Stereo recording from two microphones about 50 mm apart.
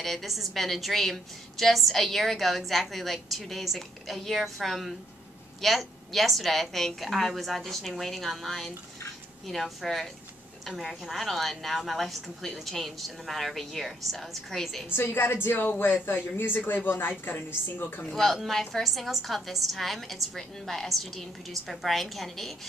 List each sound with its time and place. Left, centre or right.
0.0 s a woman's voice: centre
14.9 s a woman's voice: left
18.1 s a woman's voice: centre